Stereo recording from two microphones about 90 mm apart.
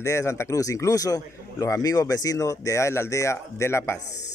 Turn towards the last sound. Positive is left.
turn(degrees=30)  # may be behind; listen again after turning